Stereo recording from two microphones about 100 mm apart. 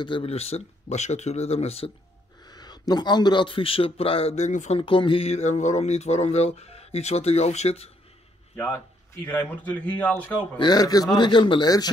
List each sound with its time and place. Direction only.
0.0 s speech: 55° left (ahead or behind)
0.3 s a man's voice: 90° left
2.4 s a man's voice: 45° left (ahead or behind); by 7.9 s 90° left
8.7 s speech: 20° left (ahead or behind)
10.6 s a man's voice: 40° left (ahead or behind)